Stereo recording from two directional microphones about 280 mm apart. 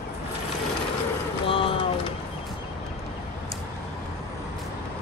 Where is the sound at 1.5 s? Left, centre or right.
Centre.